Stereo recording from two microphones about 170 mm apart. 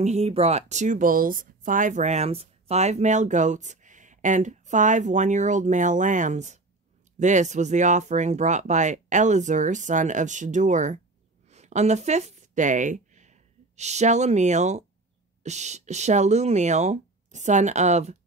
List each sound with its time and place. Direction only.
0.0 s speech: 40° right (ahead or behind)